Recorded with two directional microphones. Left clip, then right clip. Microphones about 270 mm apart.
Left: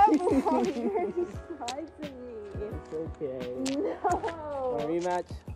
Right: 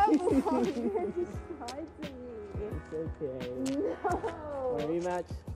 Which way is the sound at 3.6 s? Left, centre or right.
Left.